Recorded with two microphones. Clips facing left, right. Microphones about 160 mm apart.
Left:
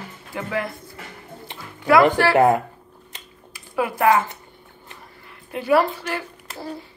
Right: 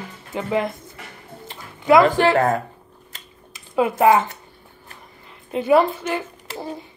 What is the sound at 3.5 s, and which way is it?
Speech, 20° right (ahead or behind).